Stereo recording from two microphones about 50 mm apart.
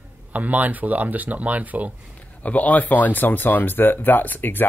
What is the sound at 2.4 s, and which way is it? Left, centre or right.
Speech, left.